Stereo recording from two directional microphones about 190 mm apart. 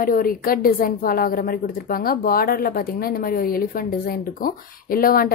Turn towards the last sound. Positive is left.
turn(degrees=50)  # may be behind; listen again after turning